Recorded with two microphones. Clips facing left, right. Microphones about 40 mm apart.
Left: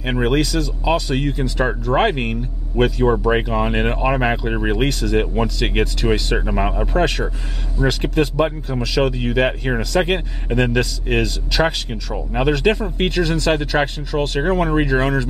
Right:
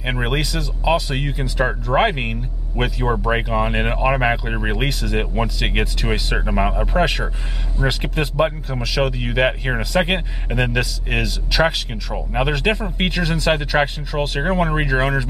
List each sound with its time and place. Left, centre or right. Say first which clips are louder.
0.0 s speech: left 4 dB; centre